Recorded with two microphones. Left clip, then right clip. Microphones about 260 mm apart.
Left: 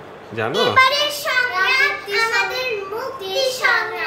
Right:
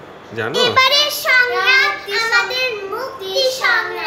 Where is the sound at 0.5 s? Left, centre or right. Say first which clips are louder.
Right 2 dB; right.